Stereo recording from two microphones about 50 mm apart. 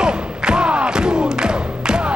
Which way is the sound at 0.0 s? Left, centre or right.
Centre.